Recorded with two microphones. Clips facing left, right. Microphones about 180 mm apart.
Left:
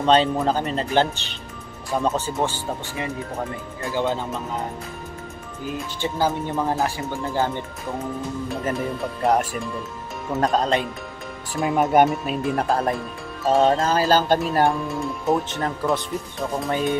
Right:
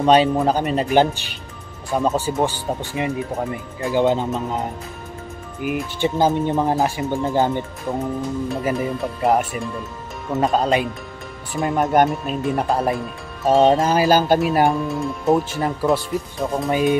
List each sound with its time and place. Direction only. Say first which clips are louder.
0.0 s speech: right 3 dB; 10° right (ahead or behind)
1.9 s speech: right 3 dB; centre (ahead or behind)
2.1 s speech: right 4 dB; 15° right (ahead or behind)
5.6 s speech: right 6 dB; 15° right (ahead or behind)
8.5 s speech: right 2 dB; 5° right (ahead or behind)
13.5 s speech: right 3 dB; 15° right (ahead or behind); by 16.7 s centre (ahead or behind)